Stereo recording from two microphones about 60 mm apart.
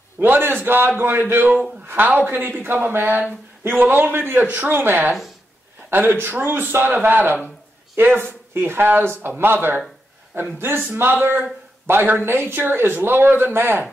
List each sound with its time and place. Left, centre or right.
0.2 s speech: right
8.5 s speech: right